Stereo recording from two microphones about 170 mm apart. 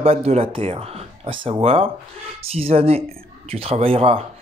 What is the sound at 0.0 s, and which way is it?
Speech, 40° right (ahead or behind).